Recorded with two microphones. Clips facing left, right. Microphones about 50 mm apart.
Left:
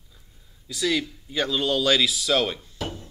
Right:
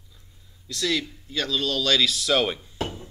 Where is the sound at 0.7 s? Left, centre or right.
Centre.